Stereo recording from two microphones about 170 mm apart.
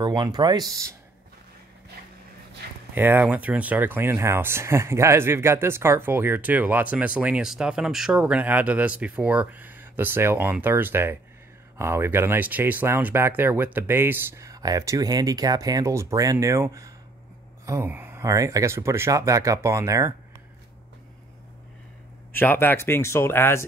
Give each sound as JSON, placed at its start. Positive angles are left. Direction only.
{"t": 0.0, "sound": "speech", "side_deg": -25}
{"t": 2.9, "sound": "speech", "side_deg": -10}
{"t": 22.3, "sound": "speech", "side_deg": 10}